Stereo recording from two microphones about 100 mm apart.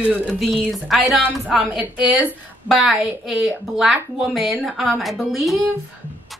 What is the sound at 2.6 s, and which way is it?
Speech, 5° right (ahead or behind).